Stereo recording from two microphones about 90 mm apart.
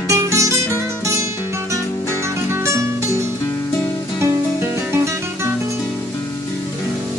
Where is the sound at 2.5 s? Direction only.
30° right (ahead or behind).